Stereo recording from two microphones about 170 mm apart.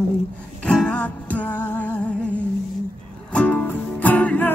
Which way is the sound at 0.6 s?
5° left (ahead or behind).